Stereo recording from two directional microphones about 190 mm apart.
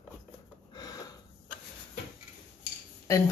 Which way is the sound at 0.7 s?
20° left (ahead or behind).